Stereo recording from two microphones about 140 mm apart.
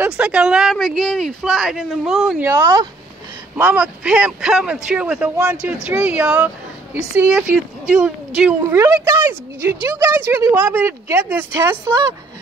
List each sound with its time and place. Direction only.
0.0 s speech: 5° right (ahead or behind)
2.4 s speech: 20° right (ahead or behind)
3.5 s speech: 10° right (ahead or behind)
8.6 s speech: 20° right (ahead or behind)